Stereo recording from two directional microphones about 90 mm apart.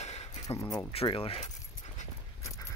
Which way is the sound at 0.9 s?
80° left.